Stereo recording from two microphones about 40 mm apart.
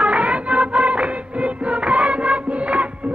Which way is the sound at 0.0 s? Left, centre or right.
Right.